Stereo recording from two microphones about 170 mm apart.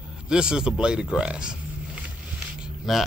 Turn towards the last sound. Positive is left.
turn(degrees=0)  # may be behind; listen again after turning